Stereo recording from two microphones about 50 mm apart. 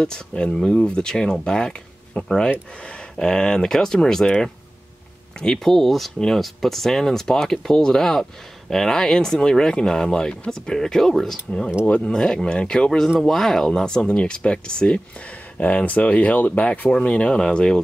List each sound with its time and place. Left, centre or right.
0.0 s speech: centre
11.8 s speech: left
12.1 s speech: centre